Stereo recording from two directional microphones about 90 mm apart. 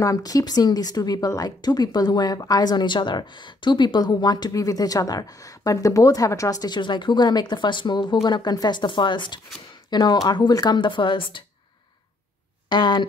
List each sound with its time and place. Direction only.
0.0 s speech: 40° left (ahead or behind); by 9.4 s 60° left (ahead or behind)
9.8 s speech: 50° left (ahead or behind); by 11.4 s 65° left (ahead or behind)
12.6 s speech: 55° left (ahead or behind)